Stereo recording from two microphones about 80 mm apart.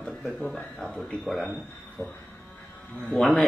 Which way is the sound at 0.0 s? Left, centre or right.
Centre.